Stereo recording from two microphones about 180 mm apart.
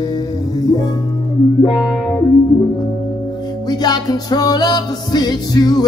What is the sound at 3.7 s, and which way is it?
Music, 20° left (ahead or behind).